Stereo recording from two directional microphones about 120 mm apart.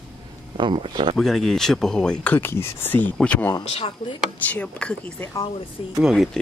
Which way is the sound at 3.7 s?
55° left (ahead or behind).